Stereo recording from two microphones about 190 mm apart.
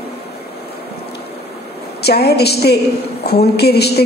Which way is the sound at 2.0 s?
60° left (ahead or behind).